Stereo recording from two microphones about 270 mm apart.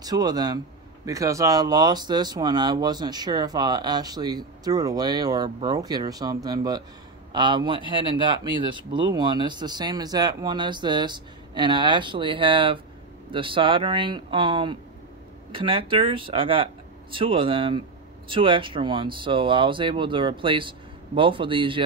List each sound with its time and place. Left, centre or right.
0.0 s speech: centre